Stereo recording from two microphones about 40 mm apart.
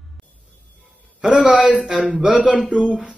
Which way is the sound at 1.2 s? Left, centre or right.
Right.